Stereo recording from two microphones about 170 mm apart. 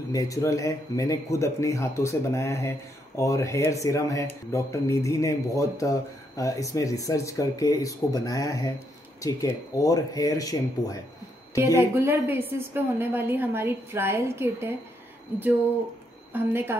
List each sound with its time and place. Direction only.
0.1 s speech: 20° left (ahead or behind)
11.5 s a woman's voice: 15° right (ahead or behind)
16.3 s a woman's voice: 10° right (ahead or behind)